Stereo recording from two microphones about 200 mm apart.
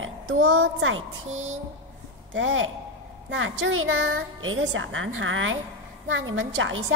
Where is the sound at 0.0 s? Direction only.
80° right.